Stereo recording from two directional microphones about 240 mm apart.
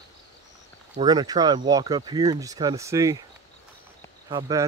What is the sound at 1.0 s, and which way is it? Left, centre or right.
Speech, centre.